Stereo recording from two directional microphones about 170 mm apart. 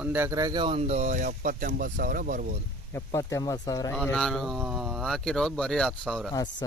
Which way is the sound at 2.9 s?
15° left (ahead or behind).